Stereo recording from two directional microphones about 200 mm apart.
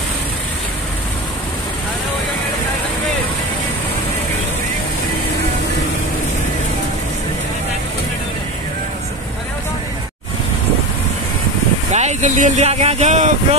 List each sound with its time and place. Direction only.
11.9 s speech: 35° right (ahead or behind)